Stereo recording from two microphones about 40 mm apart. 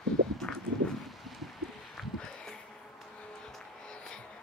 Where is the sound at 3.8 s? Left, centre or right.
Left.